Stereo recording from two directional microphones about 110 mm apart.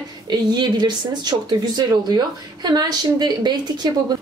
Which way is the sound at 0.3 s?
40° right (ahead or behind).